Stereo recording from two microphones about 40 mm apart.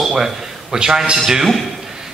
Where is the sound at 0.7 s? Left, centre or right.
Centre.